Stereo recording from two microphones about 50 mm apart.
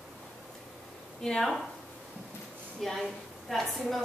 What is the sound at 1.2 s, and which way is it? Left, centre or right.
Speech, centre.